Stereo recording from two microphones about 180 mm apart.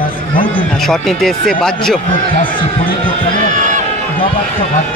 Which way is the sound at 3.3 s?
45° right (ahead or behind).